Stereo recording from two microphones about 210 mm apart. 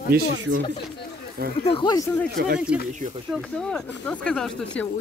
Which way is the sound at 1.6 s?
25° left (ahead or behind).